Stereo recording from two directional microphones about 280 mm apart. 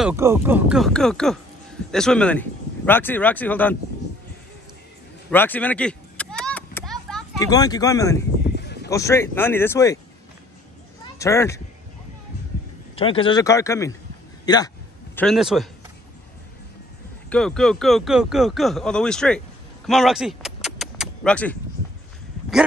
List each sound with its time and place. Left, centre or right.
0.0 s speech: centre
5.3 s a sound: centre
7.3 s speech: centre
8.5 s a sound: left
8.9 s speech: centre
11.1 s speech: centre
12.9 s speech: centre
15.1 s speech: centre
17.3 s speech: centre
19.9 s vehicle: centre